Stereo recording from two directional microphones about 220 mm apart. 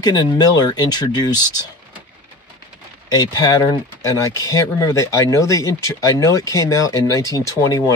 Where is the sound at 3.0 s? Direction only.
15° left (ahead or behind).